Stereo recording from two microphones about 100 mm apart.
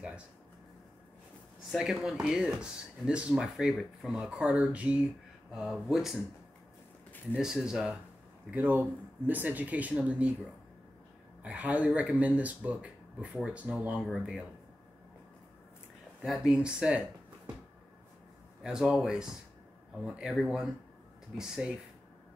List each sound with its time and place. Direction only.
1.7 s speech: 5° right (ahead or behind)
7.3 s speech: 5° right (ahead or behind)
8.5 s speech: 15° right (ahead or behind)
11.4 s speech: 10° right (ahead or behind)
16.3 s speech: 5° right (ahead or behind)
18.6 s speech: 5° right (ahead or behind)